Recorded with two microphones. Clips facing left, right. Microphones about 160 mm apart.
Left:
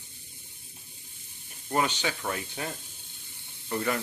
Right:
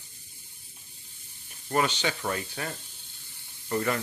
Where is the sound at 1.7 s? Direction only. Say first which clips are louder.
Right 1 dB; 10° left (ahead or behind).